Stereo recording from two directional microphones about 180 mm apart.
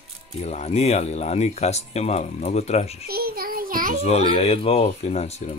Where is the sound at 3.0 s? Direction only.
55° right (ahead or behind).